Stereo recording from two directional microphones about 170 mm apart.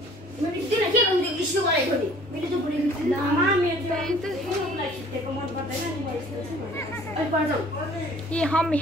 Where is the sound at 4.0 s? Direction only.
5° left (ahead or behind).